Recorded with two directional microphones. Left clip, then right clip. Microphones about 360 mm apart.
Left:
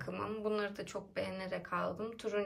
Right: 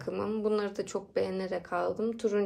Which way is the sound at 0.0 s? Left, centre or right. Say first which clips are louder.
Right 7 dB; centre.